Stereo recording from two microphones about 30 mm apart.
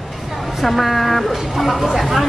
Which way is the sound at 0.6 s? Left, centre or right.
Centre.